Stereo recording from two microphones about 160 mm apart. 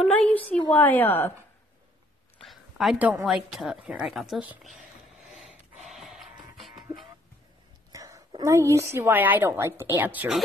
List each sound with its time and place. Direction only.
0.0 s a sound: 10° left (ahead or behind)
0.5 s a woman's voice: 10° left (ahead or behind)
2.4 s a sound: centre (ahead or behind)
3.5 s speech: 5° right (ahead or behind)
5.9 s music: centre (ahead or behind)
7.9 s a woman's voice: 20° right (ahead or behind)